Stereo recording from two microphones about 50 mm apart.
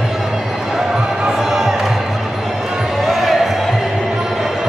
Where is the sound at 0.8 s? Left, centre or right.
Centre.